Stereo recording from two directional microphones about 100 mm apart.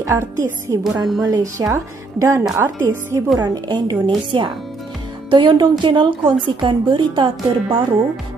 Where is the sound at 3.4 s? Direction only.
45° right (ahead or behind).